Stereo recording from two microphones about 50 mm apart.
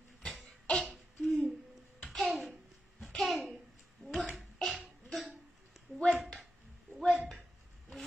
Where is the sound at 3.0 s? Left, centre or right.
Centre.